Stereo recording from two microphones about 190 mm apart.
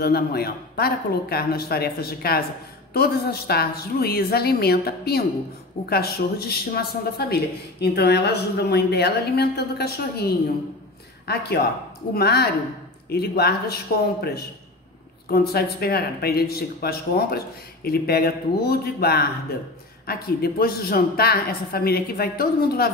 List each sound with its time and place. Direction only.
0.0 s a woman's voice: 55° left (ahead or behind)
11.2 s a woman's voice: 60° left (ahead or behind)
15.2 s a woman's voice: 55° left (ahead or behind)